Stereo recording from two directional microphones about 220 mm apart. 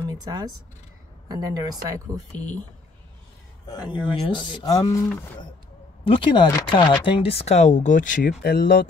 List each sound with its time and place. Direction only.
0.1 s a woman's voice: 20° right (ahead or behind)
3.6 s speech: 20° left (ahead or behind)
6.0 s speech: 25° left (ahead or behind)
8.4 s speech: 45° left (ahead or behind)